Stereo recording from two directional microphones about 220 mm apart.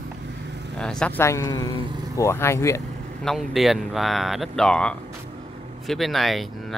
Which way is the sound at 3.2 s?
Centre (ahead or behind).